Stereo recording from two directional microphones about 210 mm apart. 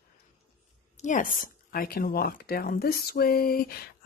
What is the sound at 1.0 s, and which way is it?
Speech, 40° left (ahead or behind).